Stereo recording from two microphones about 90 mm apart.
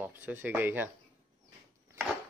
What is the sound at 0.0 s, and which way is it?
Speech, 20° right (ahead or behind).